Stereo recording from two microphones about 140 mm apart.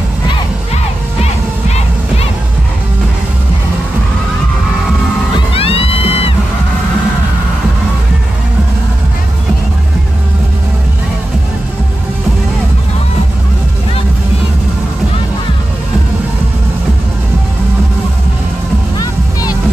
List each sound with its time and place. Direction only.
5.5 s music: 45° left (ahead or behind)